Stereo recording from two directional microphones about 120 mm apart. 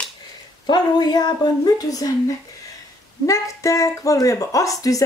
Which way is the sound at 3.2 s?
25° left (ahead or behind).